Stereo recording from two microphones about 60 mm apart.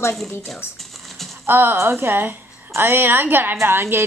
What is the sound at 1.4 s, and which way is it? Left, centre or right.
A woman's voice, right.